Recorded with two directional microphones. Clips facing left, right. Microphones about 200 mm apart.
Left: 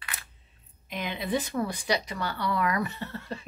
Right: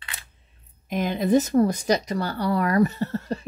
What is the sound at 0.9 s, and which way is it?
Speech, 45° right (ahead or behind).